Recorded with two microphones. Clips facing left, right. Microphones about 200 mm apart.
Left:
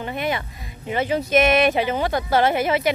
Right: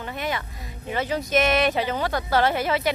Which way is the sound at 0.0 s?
20° left (ahead or behind).